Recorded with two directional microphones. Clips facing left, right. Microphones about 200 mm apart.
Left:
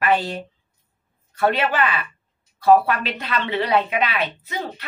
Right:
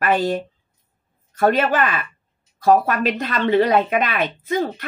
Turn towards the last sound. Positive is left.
turn(degrees=-50)  # may be behind; listen again after turning